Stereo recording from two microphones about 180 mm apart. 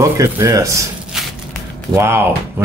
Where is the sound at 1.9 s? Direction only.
15° right (ahead or behind).